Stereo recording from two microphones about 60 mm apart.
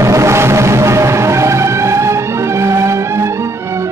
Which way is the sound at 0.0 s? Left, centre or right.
Right.